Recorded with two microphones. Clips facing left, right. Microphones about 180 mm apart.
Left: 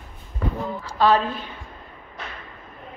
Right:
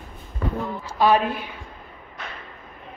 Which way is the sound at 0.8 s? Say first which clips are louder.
Even; 15° right (ahead or behind).